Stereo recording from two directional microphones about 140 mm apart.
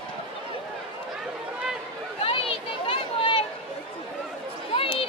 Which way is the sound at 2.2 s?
40° left (ahead or behind).